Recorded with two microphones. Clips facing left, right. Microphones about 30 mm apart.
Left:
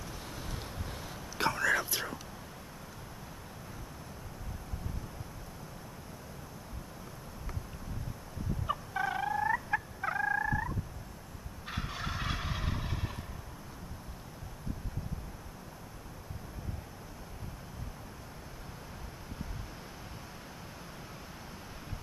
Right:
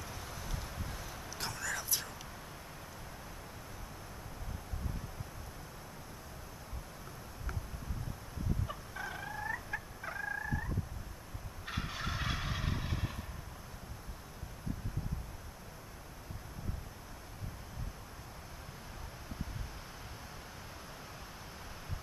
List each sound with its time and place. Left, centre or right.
0.2 s a sound: centre
0.8 s hiccup: left
1.5 s whispering: left
8.6 s fowl: left
11.6 s gobble: centre